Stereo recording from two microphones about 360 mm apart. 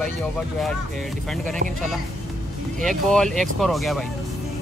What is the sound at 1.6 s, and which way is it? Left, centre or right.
Speech, right.